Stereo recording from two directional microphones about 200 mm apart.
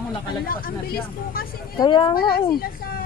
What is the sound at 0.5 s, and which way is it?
Speech, 45° left (ahead or behind).